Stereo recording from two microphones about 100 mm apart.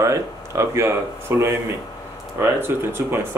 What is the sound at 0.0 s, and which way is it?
Speech, 30° right (ahead or behind).